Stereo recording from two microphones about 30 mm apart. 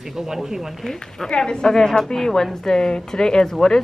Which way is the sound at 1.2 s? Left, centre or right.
Left.